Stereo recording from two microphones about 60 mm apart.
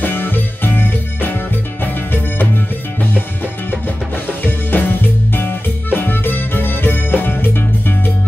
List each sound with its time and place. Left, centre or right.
0.0 s music: left
2.3 s music: left
4.4 s music: left